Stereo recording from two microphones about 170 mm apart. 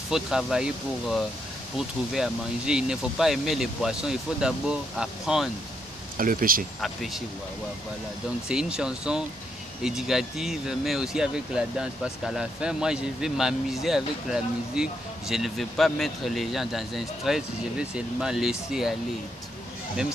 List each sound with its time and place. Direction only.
0.1 s speech: 5° right (ahead or behind)
6.1 s speech: 55° right (ahead or behind)
6.8 s speech: centre (ahead or behind)
8.5 s speech: 5° right (ahead or behind)